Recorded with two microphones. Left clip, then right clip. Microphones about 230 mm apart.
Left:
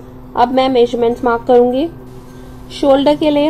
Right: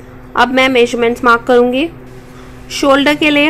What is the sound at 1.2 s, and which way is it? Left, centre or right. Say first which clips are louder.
Speech: right 2 dB; right.